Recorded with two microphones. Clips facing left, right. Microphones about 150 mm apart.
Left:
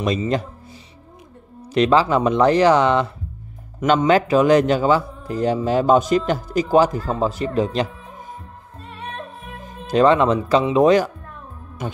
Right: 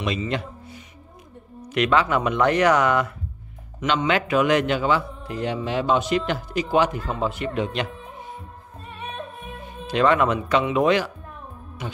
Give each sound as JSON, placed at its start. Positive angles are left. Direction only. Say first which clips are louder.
{"t": 0.0, "sound": "a man's voice", "louder": "left 5 dB", "side_deg": 40}
{"t": 3.8, "sound": "a man's voice", "louder": "left 6 dB", "side_deg": 45}
{"t": 9.6, "sound": "speech", "louder": "left 5 dB", "side_deg": 40}
{"t": 11.8, "sound": "speech", "louder": "left 5 dB", "side_deg": 45}